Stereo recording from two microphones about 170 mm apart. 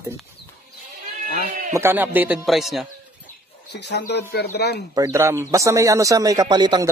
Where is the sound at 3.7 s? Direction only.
85° left.